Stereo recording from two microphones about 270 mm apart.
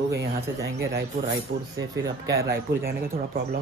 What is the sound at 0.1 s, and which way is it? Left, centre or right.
Speech, right.